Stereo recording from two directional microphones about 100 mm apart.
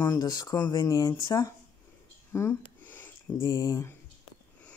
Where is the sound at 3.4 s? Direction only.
40° left (ahead or behind).